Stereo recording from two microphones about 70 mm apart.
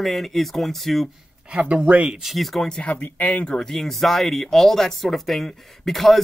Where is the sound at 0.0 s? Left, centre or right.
Centre.